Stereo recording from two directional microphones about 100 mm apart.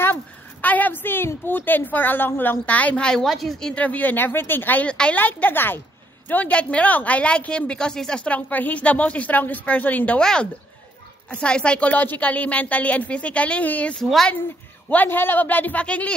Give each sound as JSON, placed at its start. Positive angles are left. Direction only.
{"t": 0.0, "sound": "a woman's voice", "side_deg": 20}
{"t": 3.7, "sound": "a woman's voice", "side_deg": 15}
{"t": 14.0, "sound": "speech", "side_deg": 0}
{"t": 14.9, "sound": "a woman's voice", "side_deg": 20}